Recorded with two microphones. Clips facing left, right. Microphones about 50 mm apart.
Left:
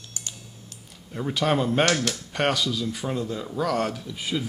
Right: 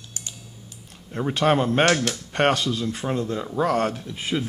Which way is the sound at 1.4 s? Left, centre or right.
Right.